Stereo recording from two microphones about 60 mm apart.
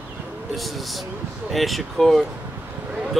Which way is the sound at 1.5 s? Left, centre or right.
Centre.